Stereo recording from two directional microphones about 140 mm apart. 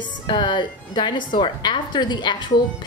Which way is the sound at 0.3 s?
35° left (ahead or behind).